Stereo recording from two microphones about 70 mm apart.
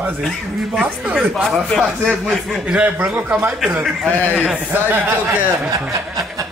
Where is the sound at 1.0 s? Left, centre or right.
Centre.